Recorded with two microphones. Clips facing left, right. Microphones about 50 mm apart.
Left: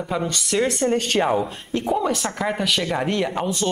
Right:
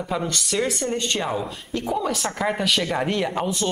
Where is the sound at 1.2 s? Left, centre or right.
Left.